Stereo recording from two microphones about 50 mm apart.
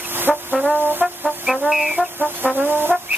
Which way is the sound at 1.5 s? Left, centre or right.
Centre.